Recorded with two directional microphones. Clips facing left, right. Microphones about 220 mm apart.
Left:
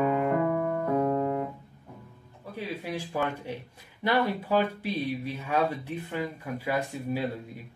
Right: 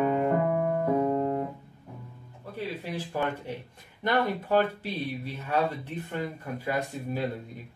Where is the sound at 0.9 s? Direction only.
10° right (ahead or behind).